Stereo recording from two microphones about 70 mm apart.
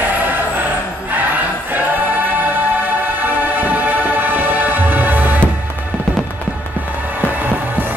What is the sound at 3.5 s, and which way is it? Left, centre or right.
Music, right.